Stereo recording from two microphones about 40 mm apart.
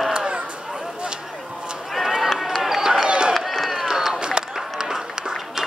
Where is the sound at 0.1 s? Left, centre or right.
Right.